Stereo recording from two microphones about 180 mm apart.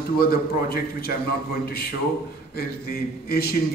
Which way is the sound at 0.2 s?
55° left (ahead or behind).